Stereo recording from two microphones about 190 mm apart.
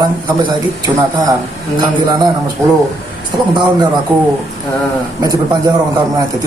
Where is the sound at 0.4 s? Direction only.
25° right (ahead or behind).